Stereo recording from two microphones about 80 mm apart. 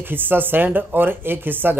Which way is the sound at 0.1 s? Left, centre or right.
Right.